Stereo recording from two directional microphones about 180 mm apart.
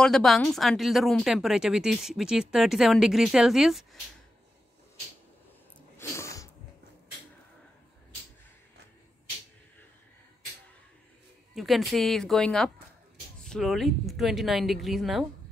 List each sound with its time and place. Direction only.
0.0 s speech: centre (ahead or behind)
5.9 s sneeze: 15° left (ahead or behind)
11.5 s speech: centre (ahead or behind)